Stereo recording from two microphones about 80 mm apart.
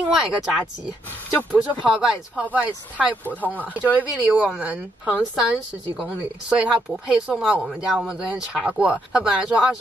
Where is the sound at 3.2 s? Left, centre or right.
Left.